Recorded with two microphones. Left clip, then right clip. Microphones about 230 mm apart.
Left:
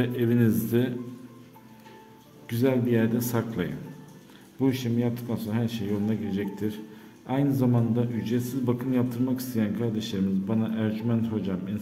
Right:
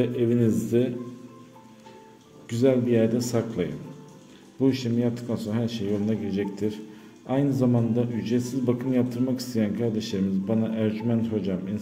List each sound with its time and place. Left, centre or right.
0.0 s a man's voice: centre
2.5 s a man's voice: centre